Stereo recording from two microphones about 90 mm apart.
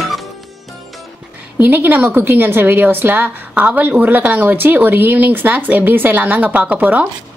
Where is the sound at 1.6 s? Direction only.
20° right (ahead or behind).